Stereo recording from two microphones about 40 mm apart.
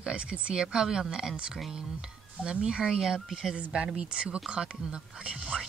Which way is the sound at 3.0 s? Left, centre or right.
Centre.